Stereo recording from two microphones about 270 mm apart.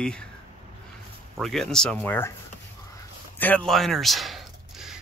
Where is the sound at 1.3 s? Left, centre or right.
Centre.